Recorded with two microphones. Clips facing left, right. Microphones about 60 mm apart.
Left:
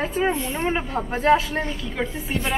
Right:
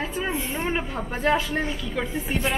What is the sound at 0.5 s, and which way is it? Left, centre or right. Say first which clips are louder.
Speech: left 3 dB; centre.